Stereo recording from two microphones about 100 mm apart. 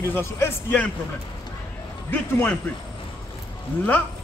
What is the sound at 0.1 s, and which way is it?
Speech, 25° left (ahead or behind).